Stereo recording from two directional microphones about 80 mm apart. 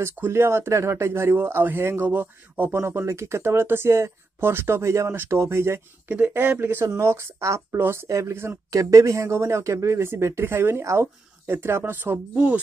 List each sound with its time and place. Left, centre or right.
0.0 s speech: right
6.0 s speech: centre
8.6 s speech: right